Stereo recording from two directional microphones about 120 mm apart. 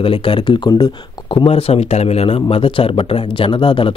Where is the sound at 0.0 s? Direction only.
45° left (ahead or behind).